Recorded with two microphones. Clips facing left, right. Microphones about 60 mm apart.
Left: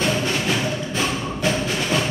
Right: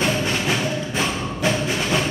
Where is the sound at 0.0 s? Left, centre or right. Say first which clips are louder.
Even; centre.